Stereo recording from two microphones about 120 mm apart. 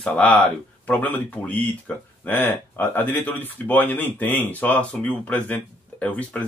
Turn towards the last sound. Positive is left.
turn(degrees=10)  # may be behind; listen again after turning